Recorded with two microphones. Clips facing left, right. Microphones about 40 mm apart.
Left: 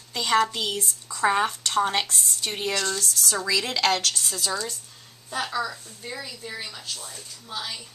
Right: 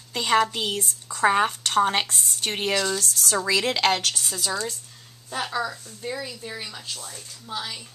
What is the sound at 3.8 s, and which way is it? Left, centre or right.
Speech, centre.